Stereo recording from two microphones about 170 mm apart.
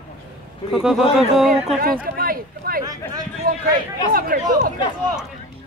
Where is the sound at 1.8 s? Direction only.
60° right (ahead or behind).